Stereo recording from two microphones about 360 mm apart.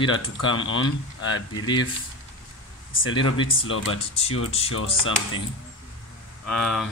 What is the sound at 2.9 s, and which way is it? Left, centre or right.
Speech, left.